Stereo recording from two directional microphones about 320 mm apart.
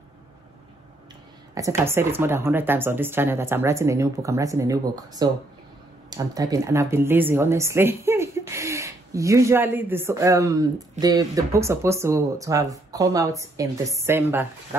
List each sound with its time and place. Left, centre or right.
1.5 s a woman's voice: centre